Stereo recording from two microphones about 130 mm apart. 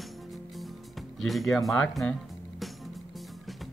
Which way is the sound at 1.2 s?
Centre (ahead or behind).